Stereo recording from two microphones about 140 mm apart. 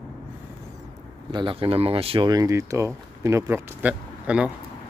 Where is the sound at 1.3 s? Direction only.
40° right (ahead or behind).